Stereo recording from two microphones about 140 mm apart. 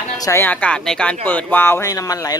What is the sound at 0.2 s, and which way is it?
Speech, 20° left (ahead or behind).